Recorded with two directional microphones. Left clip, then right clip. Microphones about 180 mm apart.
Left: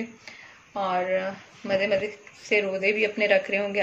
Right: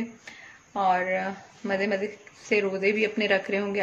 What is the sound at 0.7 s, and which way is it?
Speech, 45° right (ahead or behind).